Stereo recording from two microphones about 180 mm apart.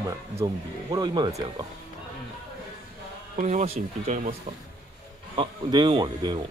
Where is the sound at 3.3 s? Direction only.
40° right (ahead or behind).